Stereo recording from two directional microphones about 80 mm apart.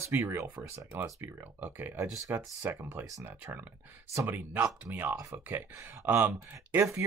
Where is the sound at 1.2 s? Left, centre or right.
Right.